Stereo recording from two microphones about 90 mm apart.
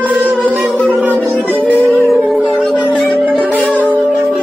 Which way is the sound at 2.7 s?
15° left (ahead or behind).